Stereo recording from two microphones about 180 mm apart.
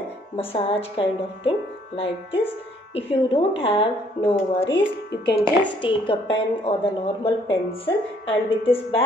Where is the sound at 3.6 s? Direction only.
30° left (ahead or behind).